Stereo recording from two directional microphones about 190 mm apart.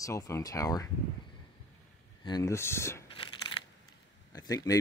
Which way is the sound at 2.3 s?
20° left (ahead or behind).